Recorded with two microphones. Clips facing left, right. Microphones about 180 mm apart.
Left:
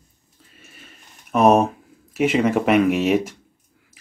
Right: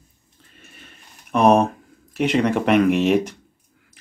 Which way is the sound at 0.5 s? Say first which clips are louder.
Even; centre (ahead or behind).